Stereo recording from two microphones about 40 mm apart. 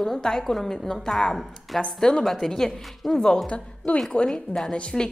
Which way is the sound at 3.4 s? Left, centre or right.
Left.